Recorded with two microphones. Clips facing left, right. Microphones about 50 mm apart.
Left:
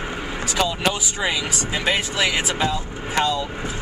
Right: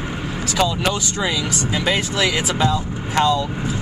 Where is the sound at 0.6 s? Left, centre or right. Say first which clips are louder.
Right 2 dB; centre.